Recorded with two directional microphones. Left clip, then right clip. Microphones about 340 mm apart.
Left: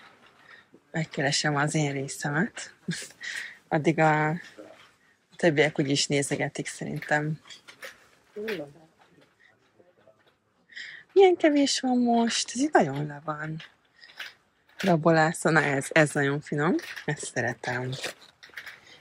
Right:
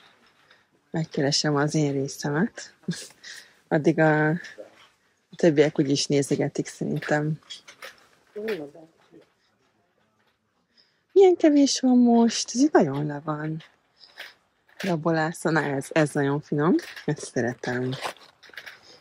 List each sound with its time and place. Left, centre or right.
0.9 s speech: centre
5.4 s speech: centre
10.7 s speech: centre
14.0 s a sound: centre
14.8 s speech: centre
18.6 s dog: centre